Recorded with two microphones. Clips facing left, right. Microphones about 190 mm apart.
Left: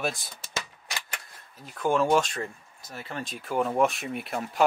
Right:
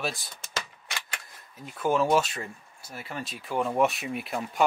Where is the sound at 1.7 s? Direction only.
5° right (ahead or behind).